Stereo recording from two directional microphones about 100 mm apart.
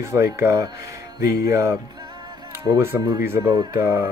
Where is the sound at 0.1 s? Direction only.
25° right (ahead or behind).